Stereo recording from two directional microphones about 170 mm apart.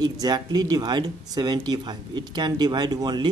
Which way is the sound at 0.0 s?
25° right (ahead or behind).